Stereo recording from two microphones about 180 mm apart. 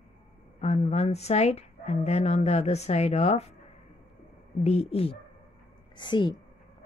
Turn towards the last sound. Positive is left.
turn(degrees=25)  # may be behind; listen again after turning